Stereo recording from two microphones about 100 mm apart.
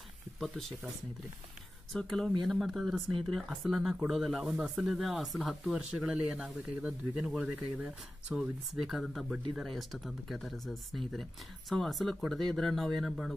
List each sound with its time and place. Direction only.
0.4 s speech: 5° left (ahead or behind)
2.0 s speech: 5° left (ahead or behind)